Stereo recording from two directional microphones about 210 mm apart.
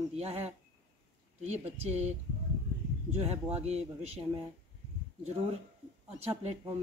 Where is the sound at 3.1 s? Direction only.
30° right (ahead or behind).